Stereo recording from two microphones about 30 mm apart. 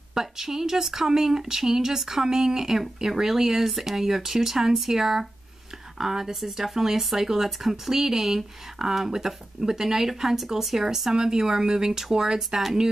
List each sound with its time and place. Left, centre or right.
0.1 s speech: centre